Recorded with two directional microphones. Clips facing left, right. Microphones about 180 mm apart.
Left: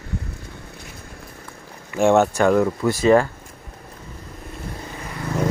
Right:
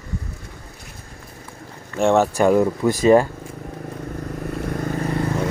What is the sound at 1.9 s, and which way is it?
Speech, centre (ahead or behind).